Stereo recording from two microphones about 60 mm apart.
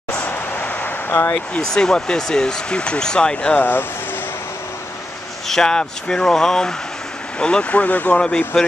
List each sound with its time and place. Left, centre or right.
0.3 s vehicle: left
1.7 s speech: centre
3.5 s speech: left
5.5 s speech: centre; by 8.2 s left